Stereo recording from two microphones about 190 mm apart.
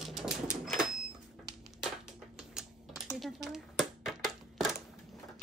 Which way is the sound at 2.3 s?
Centre (ahead or behind).